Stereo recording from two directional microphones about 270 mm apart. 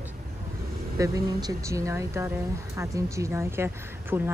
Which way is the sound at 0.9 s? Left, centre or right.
Centre.